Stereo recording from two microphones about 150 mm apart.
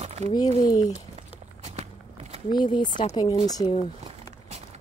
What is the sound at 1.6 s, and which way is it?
Walk, 45° right (ahead or behind).